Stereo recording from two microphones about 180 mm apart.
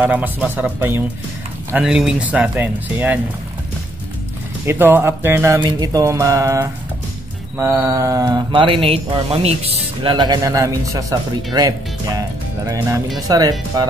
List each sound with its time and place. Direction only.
0.0 s speech: 10° right (ahead or behind)
4.6 s speech: 10° right (ahead or behind)